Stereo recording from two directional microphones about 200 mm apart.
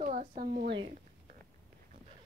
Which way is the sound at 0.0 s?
40° right (ahead or behind).